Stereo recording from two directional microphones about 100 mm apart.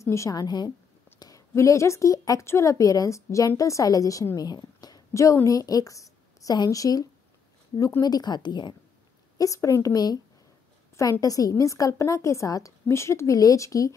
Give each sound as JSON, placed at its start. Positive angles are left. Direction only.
{"t": 0.0, "sound": "a woman's voice", "side_deg": 30}
{"t": 1.2, "sound": "a woman's voice", "side_deg": 35}
{"t": 9.4, "sound": "a woman's voice", "side_deg": 35}